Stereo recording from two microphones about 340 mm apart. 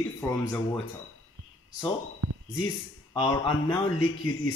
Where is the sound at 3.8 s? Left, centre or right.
Left.